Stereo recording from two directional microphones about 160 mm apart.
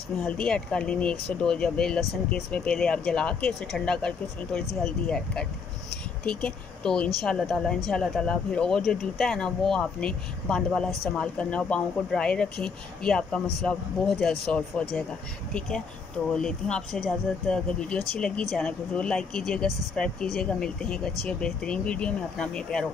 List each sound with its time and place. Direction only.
0.2 s speech: 5° left (ahead or behind)
16.3 s speech: 5° left (ahead or behind)